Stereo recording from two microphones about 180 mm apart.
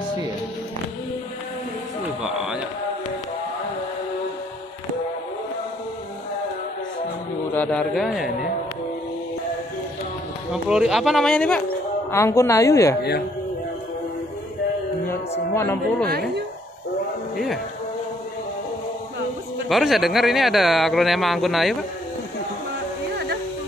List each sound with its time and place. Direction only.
2.2 s a sound: 5° right (ahead or behind)
7.5 s speech: 5° left (ahead or behind)
10.5 s a woman's voice: 5° right (ahead or behind); by 12.9 s 15° left (ahead or behind)
15.5 s a woman's voice: 15° left (ahead or behind)
16.1 s speech: 60° right (ahead or behind)
19.7 s speech: centre (ahead or behind)